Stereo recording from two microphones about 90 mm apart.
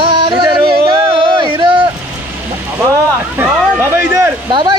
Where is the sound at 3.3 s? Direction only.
25° right (ahead or behind).